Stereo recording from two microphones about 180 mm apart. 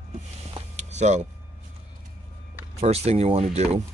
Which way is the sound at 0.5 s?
40° right (ahead or behind).